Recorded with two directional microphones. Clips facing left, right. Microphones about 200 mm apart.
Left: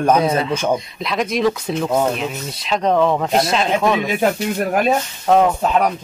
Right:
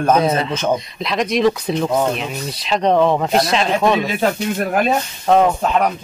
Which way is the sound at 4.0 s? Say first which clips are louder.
Left 1 dB; 15° left (ahead or behind).